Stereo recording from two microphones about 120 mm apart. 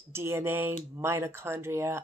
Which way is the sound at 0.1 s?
20° right (ahead or behind).